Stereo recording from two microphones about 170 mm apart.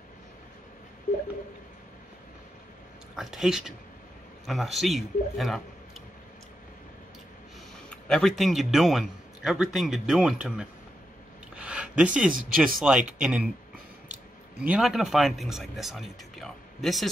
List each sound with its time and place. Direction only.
3.2 s a man's voice: centre (ahead or behind)
7.9 s a man's voice: 5° left (ahead or behind)
11.5 s a sound: 5° right (ahead or behind)
12.3 s speech: 55° right (ahead or behind)
12.8 s a man's voice: 5° right (ahead or behind)
14.6 s a man's voice: 5° right (ahead or behind)